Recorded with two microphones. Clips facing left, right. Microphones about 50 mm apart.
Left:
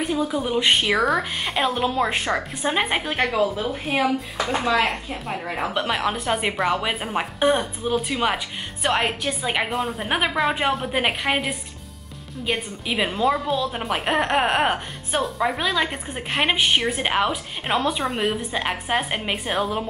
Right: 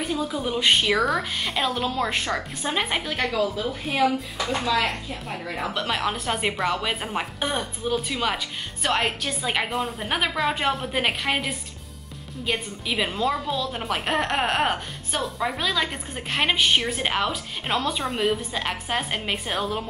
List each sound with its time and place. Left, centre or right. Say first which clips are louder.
0.0 s a woman's voice: left 3 dB; centre
5.7 s a woman's voice: left 2 dB; centre
10.0 s a woman's voice: left 3 dB; centre
15.6 s a woman's voice: left 2 dB; centre